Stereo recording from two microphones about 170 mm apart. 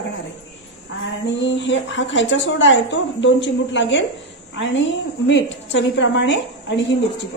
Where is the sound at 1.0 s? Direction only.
90° left.